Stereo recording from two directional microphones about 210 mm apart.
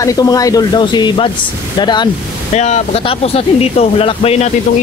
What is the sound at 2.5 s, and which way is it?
Speech, 35° left (ahead or behind).